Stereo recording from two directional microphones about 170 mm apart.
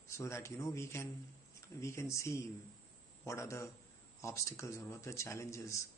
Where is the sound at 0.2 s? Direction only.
15° left (ahead or behind).